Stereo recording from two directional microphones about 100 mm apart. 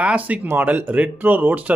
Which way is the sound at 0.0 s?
15° right (ahead or behind).